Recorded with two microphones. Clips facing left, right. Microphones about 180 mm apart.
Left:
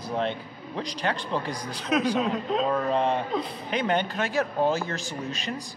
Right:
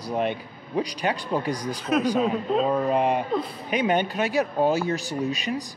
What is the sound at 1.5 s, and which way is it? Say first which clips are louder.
Speech: right 6 dB; 40° right (ahead or behind).